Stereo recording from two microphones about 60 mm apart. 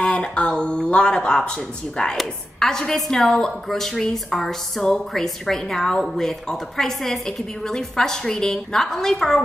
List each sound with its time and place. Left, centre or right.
0.0 s a woman's voice: centre